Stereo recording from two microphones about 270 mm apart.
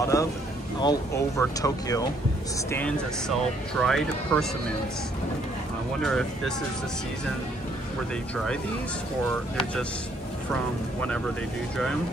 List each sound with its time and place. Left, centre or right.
0.0 s speech: centre
5.9 s speech: centre
9.3 s speech: centre